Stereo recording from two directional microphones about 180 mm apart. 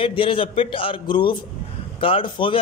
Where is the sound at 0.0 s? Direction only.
30° left (ahead or behind).